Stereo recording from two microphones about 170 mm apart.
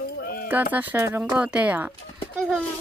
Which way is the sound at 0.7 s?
10° right (ahead or behind).